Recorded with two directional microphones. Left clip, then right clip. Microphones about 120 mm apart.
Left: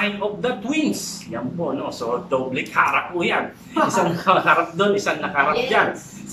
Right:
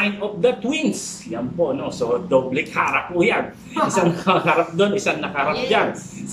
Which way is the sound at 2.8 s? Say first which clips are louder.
Left 1 dB; 30° right (ahead or behind).